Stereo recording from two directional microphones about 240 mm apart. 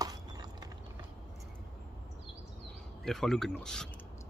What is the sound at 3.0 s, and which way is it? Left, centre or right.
Speech, centre.